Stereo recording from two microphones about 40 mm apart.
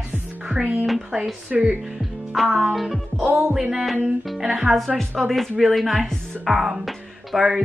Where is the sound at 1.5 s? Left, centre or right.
Right.